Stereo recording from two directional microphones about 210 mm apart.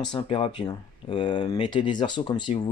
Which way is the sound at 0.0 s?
25° left (ahead or behind).